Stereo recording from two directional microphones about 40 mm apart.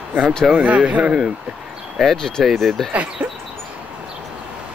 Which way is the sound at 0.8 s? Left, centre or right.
Right.